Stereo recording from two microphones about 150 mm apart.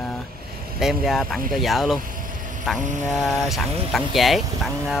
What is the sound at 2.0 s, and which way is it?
Vehicle, 65° right (ahead or behind).